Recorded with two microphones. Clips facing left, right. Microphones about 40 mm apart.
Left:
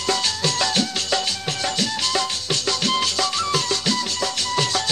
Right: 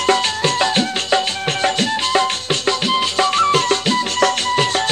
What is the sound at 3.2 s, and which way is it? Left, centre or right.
Music, right.